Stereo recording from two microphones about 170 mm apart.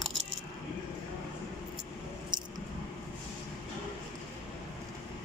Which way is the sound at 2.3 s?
25° right (ahead or behind).